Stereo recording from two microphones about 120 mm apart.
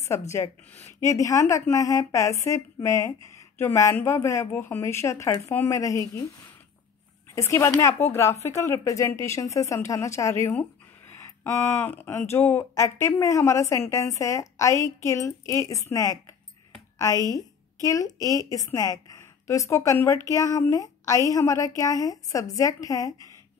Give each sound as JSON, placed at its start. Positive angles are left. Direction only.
{"t": 0.3, "sound": "a woman's voice", "side_deg": 25}
{"t": 7.3, "sound": "a woman's voice", "side_deg": 20}
{"t": 17.8, "sound": "a woman's voice", "side_deg": 30}